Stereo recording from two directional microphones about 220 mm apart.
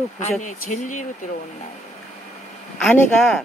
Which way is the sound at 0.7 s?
35° left (ahead or behind).